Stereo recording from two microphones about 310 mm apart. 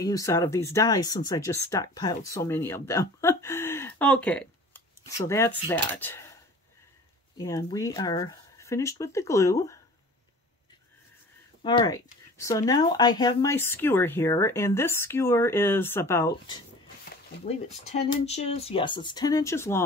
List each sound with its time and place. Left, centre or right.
0.0 s speech: centre
7.3 s speech: centre
11.6 s speech: centre
17.5 s speech: left